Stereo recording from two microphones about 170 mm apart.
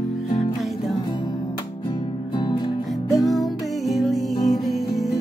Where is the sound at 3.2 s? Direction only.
Centre (ahead or behind).